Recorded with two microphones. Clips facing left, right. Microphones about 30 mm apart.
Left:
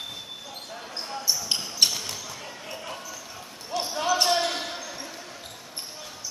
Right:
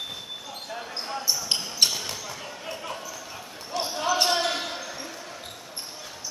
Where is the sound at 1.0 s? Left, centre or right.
Centre.